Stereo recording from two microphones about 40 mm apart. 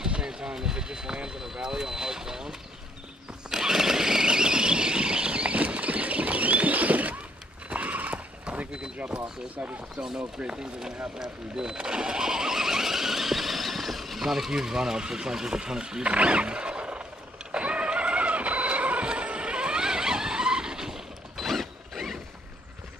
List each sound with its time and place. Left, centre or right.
0.0 s speech: centre
3.4 s vehicle: centre; by 7.2 s right
7.7 s horse: right
8.9 s a sound: right
9.6 s speech: right
9.9 s speech: centre
16.0 s vehicle: right; by 21.0 s centre
21.4 s mechanisms: centre